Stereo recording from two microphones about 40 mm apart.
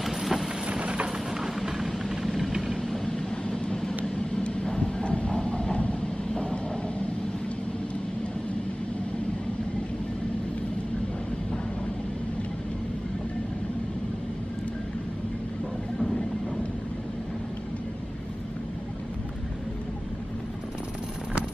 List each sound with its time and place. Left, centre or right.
0.0 s vehicle: centre
0.7 s a sound: right
1.6 s vehicle: centre
3.1 s vehicle: left